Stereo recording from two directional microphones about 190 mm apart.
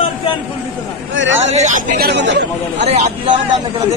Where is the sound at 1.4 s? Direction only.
35° right (ahead or behind); by 2.9 s 65° right (ahead or behind).